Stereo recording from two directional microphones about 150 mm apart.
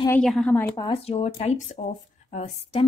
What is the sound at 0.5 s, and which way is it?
Speech, 15° left (ahead or behind).